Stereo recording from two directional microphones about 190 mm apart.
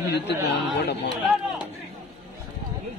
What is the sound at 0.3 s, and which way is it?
Speech, 65° left (ahead or behind).